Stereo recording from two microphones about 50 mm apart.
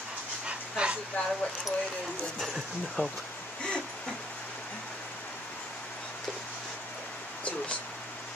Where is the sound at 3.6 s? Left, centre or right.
Centre.